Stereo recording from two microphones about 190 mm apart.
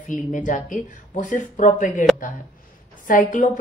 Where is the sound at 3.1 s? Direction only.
45° left (ahead or behind).